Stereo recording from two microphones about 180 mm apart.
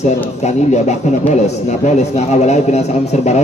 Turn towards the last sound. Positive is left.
turn(degrees=40)  # may be behind; listen again after turning